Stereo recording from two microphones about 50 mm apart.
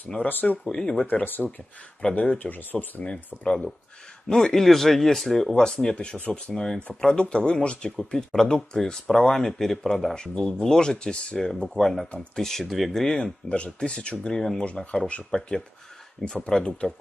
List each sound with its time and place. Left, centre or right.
0.2 s speech: left
0.7 s speech: centre
1.2 s speech: left
4.3 s speech: centre
6.1 s speech: left
6.4 s speech: centre
13.1 s speech: centre
14.9 s speech: left